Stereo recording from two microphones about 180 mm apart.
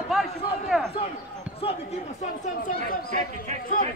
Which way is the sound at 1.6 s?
35° left (ahead or behind).